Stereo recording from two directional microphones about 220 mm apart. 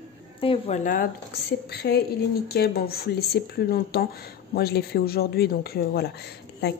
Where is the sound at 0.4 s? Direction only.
25° left (ahead or behind).